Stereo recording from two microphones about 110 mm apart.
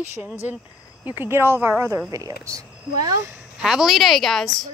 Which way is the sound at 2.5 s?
30° right (ahead or behind).